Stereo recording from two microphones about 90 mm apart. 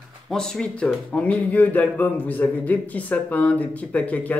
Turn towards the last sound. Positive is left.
turn(degrees=15)  # may be behind; listen again after turning